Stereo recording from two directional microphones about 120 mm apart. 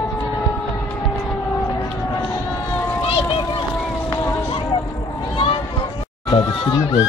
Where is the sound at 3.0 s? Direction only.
50° left (ahead or behind).